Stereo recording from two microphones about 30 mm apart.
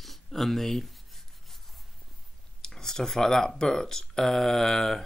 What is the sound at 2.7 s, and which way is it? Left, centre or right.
Speech, centre.